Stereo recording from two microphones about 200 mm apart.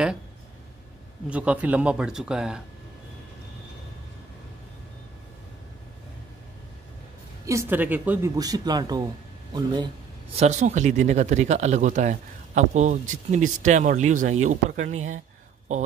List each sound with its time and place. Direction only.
1.3 s speech: 5° right (ahead or behind)
7.4 s speech: 10° right (ahead or behind)
10.3 s speech: 35° right (ahead or behind)